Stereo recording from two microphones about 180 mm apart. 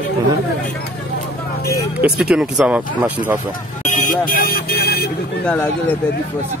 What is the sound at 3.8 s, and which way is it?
Vehicle, 45° left (ahead or behind).